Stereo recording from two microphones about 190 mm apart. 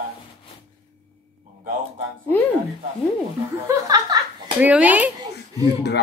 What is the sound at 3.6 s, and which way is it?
A woman's voice, 20° right (ahead or behind).